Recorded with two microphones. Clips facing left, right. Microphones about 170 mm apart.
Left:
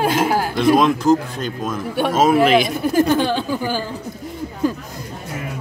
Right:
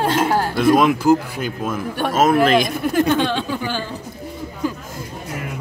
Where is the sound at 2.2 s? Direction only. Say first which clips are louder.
Even; 5° left (ahead or behind).